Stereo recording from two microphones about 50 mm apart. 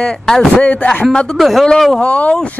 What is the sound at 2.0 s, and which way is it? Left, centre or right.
Speech, left.